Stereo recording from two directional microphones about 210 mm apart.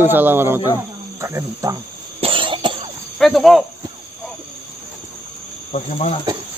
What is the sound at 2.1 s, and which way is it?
Cough, 25° right (ahead or behind).